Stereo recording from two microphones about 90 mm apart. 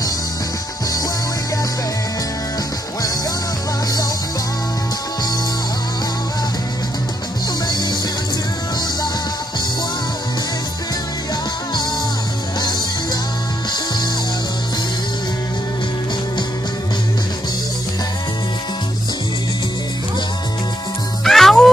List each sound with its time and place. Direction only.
7.6 s music: 50° left (ahead or behind)
12.5 s music: 50° left (ahead or behind)
21.2 s music: 5° left (ahead or behind)